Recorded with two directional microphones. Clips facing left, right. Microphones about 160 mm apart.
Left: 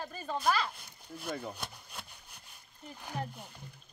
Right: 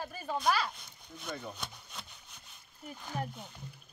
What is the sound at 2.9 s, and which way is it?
Speech, 10° left (ahead or behind).